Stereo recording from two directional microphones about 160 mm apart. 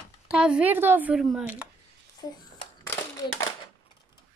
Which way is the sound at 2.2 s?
25° left (ahead or behind).